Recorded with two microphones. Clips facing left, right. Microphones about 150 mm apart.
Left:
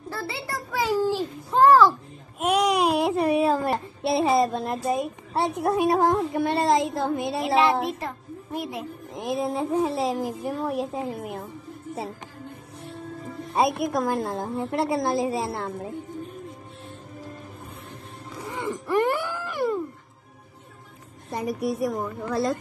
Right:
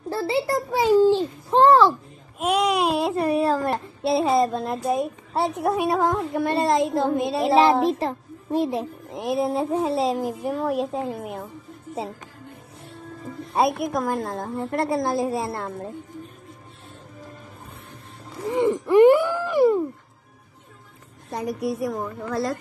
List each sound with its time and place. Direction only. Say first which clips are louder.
0.1 s a sound: right 10 dB; 25° right (ahead or behind)
2.3 s babbling: even; centre (ahead or behind)
7.5 s speech: right 4 dB; 35° right (ahead or behind)
9.1 s a woman's voice: right 3 dB; 5° right (ahead or behind)
13.5 s a woman's voice: right 1 dB; centre (ahead or behind)
18.4 s a sound: right 10 dB; 20° right (ahead or behind)
21.3 s a woman's voice: even; centre (ahead or behind)